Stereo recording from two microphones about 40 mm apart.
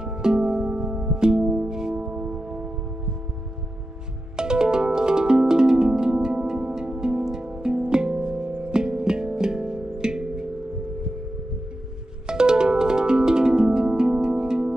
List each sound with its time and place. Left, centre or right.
0.0 s music: centre
4.4 s music: centre
12.3 s music: centre